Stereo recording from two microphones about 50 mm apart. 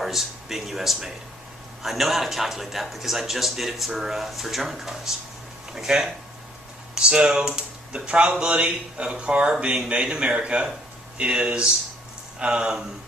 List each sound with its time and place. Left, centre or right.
0.0 s a man's voice: centre